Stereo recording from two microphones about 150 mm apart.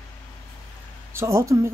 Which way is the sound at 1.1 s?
20° right (ahead or behind).